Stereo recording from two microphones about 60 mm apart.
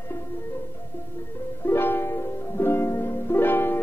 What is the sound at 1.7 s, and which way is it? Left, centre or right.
Music, left.